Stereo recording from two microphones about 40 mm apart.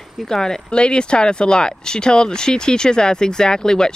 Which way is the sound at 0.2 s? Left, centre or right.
Centre.